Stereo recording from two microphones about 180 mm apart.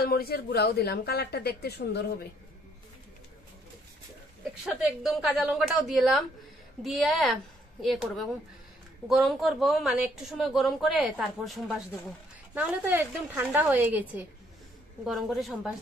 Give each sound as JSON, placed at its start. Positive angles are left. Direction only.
{"t": 0.1, "sound": "speech", "side_deg": 60}
{"t": 4.6, "sound": "a woman's voice", "side_deg": 0}